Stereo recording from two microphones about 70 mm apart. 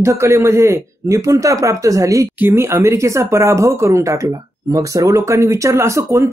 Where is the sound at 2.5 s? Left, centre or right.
Right.